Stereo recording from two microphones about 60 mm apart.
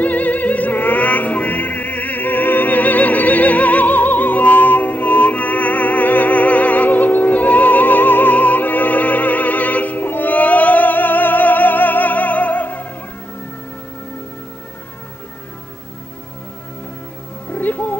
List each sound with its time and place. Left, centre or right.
0.0 s opera: left
17.5 s music: left